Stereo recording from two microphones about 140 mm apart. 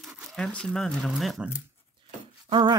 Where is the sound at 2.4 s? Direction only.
40° right (ahead or behind).